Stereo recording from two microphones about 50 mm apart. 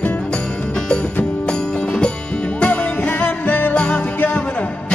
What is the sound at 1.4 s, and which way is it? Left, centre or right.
Music, centre.